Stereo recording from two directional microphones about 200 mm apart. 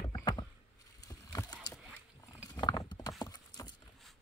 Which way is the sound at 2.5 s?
20° left (ahead or behind).